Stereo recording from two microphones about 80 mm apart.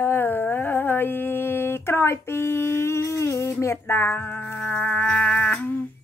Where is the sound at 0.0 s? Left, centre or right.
Left.